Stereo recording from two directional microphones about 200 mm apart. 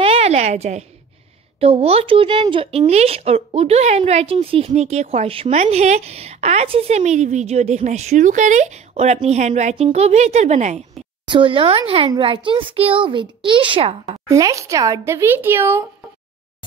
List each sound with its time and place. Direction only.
0.0 s a sound: 30° right (ahead or behind)
1.6 s a woman's voice: 30° right (ahead or behind)
11.2 s speech: 25° right (ahead or behind)
14.2 s speech: 15° right (ahead or behind)